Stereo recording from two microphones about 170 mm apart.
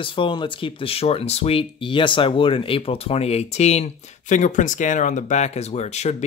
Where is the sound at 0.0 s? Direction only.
30° left (ahead or behind).